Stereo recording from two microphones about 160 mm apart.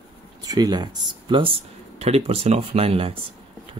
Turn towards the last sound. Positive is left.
turn(degrees=-35)  # may be behind; listen again after turning